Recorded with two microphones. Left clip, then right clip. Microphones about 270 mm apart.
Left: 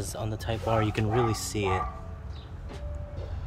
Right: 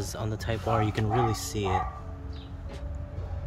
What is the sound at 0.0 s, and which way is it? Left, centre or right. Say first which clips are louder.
Speech: even; centre.